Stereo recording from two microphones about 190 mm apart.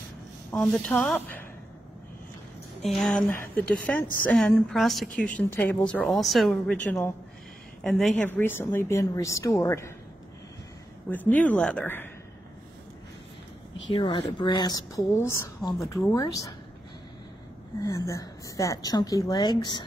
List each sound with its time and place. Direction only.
0.5 s a woman's voice: 5° left (ahead or behind)
2.8 s a woman's voice: centre (ahead or behind)
11.1 s a woman's voice: 10° left (ahead or behind)
13.8 s a woman's voice: 25° left (ahead or behind)
17.8 s a woman's voice: 15° left (ahead or behind)